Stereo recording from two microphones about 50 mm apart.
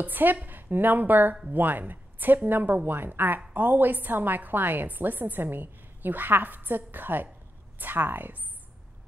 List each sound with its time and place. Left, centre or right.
0.0 s a woman's voice: right